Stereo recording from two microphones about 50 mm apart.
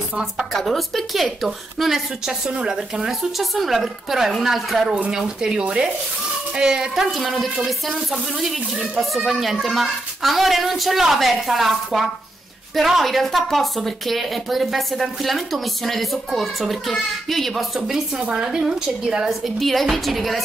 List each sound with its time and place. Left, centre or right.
0.5 s speech: centre
5.1 s a woman's voice: centre
7.1 s speech: centre
17.7 s a woman's voice: centre
19.2 s speech: centre